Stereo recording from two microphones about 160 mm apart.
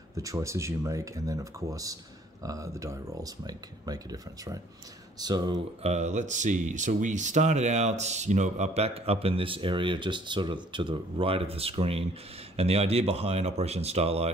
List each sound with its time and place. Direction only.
0.1 s speech: 20° right (ahead or behind)
5.8 s speech: 45° right (ahead or behind)